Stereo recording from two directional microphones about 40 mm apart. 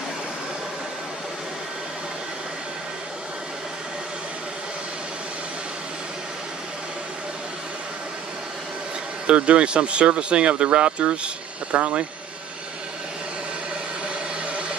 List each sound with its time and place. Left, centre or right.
9.3 s speech: right